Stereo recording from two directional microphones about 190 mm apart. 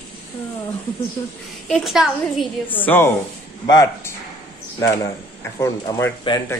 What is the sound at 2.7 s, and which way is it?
A man's voice, 10° left (ahead or behind).